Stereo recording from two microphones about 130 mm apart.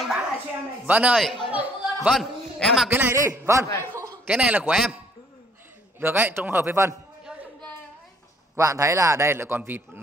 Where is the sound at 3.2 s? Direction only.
25° right (ahead or behind).